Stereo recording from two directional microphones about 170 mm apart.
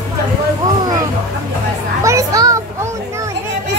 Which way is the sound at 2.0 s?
20° right (ahead or behind).